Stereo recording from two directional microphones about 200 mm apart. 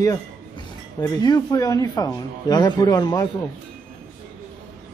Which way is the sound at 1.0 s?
20° left (ahead or behind).